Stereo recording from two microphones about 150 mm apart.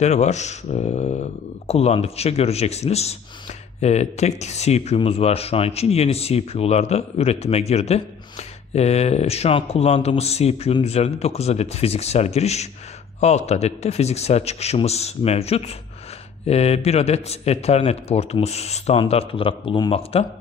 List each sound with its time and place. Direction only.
0.0 s speech: 50° left (ahead or behind)